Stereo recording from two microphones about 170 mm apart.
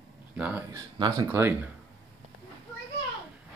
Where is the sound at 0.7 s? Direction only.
25° right (ahead or behind).